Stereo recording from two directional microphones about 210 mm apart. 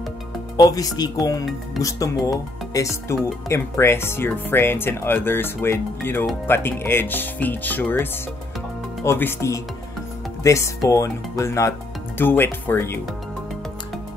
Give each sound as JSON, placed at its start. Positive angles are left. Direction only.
{"t": 0.6, "sound": "speech", "side_deg": 15}